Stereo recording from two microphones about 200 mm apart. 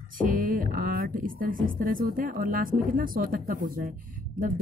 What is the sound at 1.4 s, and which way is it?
A woman's voice, 45° right (ahead or behind).